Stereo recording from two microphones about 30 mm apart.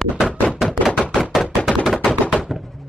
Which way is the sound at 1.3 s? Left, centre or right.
Centre.